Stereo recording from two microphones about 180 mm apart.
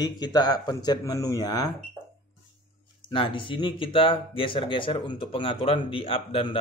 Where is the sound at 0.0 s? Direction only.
20° left (ahead or behind).